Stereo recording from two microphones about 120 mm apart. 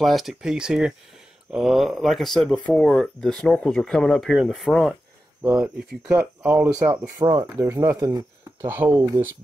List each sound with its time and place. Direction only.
0.0 s speech: centre (ahead or behind)
5.6 s speech: 10° right (ahead or behind)
6.9 s speech: 35° right (ahead or behind)